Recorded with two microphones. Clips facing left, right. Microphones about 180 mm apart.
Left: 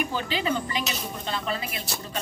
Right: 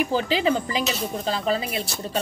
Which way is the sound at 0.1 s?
30° right (ahead or behind).